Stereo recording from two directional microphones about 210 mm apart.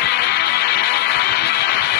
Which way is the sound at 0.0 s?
50° left (ahead or behind).